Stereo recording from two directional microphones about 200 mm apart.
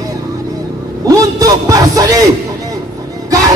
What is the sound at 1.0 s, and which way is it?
A man's voice, 15° right (ahead or behind).